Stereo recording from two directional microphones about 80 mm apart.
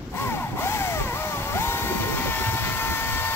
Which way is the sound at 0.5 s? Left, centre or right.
Left.